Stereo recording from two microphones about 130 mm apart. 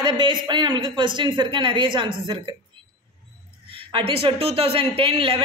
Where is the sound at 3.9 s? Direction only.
45° right (ahead or behind).